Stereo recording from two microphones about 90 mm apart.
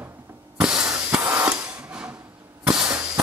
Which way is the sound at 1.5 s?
10° right (ahead or behind).